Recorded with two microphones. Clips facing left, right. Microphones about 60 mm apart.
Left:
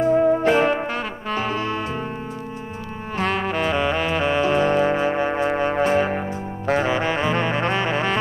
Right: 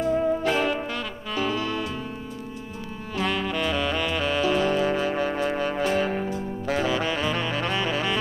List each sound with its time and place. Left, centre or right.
0.0 s music: left
3.2 s saxophone: left